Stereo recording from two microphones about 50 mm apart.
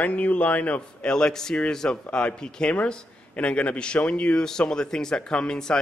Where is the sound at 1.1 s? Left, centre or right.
Centre.